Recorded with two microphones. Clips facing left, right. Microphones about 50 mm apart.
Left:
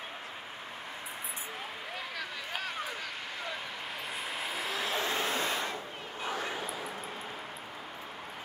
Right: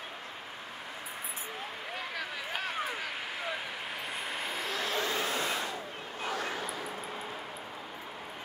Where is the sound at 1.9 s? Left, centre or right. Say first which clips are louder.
Right 2 dB; centre.